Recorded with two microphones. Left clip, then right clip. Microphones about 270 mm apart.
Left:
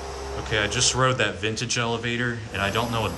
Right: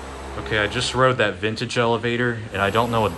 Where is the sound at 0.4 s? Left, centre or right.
Centre.